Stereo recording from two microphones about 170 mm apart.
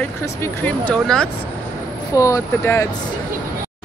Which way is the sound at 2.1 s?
20° left (ahead or behind).